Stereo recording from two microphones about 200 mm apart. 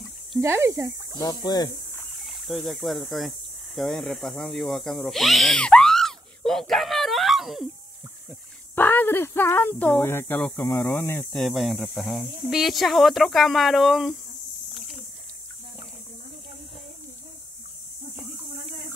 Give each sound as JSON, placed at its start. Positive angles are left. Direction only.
{"t": 0.4, "sound": "speech", "side_deg": -10}
{"t": 1.2, "sound": "speech", "side_deg": 20}
{"t": 2.0, "sound": "speech", "side_deg": 0}
{"t": 8.7, "sound": "speech", "side_deg": 10}